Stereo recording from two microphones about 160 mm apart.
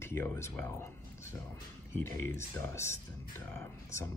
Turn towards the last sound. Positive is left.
turn(degrees=20)  # may be behind; listen again after turning